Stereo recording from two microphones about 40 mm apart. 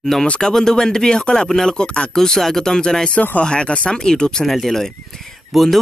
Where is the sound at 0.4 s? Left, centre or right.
Centre.